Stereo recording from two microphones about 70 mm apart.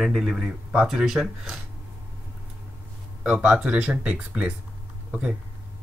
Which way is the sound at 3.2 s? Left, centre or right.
Centre.